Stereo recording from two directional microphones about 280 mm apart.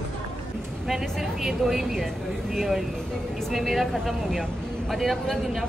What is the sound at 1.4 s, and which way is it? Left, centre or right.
Speech, centre.